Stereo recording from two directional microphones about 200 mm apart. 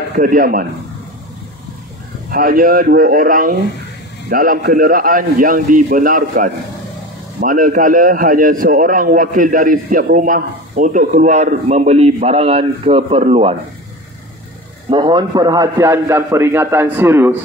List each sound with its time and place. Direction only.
0.1 s a man's voice: 40° right (ahead or behind)
2.3 s a man's voice: 45° right (ahead or behind); by 13.6 s 30° right (ahead or behind)
14.9 s a man's voice: 20° right (ahead or behind)